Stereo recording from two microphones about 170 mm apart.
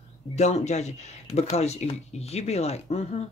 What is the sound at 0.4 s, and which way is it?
Speech, 40° left (ahead or behind).